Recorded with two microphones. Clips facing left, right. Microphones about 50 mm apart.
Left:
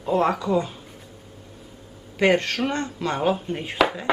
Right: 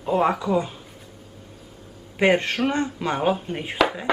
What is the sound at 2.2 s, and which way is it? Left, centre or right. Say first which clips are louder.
Speech: even; centre.